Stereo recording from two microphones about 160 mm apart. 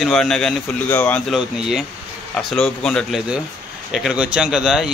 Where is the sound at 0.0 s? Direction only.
Centre (ahead or behind).